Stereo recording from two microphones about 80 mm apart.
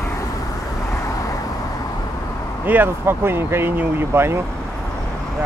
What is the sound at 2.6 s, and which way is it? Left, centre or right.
Speech, right.